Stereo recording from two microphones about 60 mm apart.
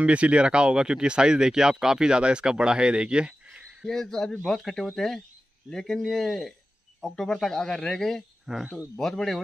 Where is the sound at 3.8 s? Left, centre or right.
Centre.